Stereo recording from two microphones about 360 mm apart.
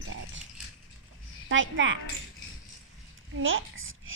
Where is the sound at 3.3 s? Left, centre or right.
Right.